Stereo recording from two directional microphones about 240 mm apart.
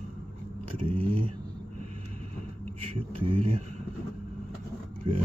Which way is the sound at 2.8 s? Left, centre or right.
Right.